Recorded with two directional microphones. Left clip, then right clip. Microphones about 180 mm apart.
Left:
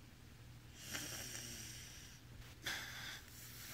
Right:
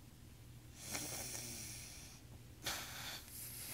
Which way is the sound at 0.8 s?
Centre (ahead or behind).